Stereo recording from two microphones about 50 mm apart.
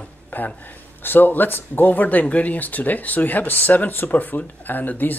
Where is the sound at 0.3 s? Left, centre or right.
Left.